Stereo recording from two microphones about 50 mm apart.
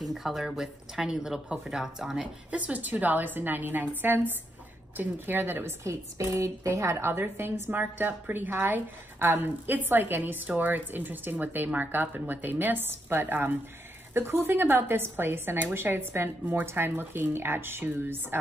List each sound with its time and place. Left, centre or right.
0.0 s speech: centre
2.5 s a woman's voice: right
5.9 s a woman's voice: right
7.1 s speech: right
7.7 s a woman's voice: right